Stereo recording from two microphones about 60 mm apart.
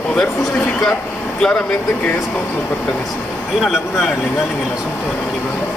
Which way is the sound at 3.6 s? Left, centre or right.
Centre.